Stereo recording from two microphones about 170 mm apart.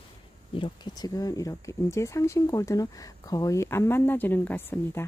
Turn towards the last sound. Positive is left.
turn(degrees=10)  # may be behind; listen again after turning